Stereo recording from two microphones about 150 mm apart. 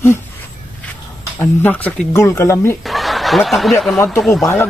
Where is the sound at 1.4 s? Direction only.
10° left (ahead or behind).